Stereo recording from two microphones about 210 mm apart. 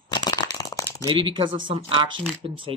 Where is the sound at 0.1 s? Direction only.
20° left (ahead or behind).